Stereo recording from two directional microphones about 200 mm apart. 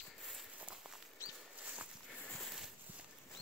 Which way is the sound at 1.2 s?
15° left (ahead or behind).